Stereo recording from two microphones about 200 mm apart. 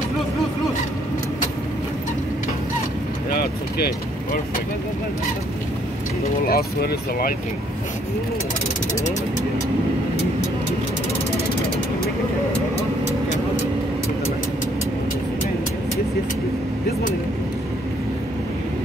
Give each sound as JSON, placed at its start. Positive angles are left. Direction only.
{"t": 3.7, "sound": "speech", "side_deg": 50}
{"t": 6.4, "sound": "speech", "side_deg": 50}